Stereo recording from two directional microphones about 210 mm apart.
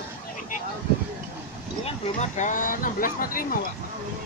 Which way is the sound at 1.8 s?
35° left (ahead or behind).